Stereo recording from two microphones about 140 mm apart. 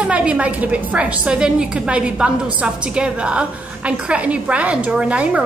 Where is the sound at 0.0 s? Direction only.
10° right (ahead or behind).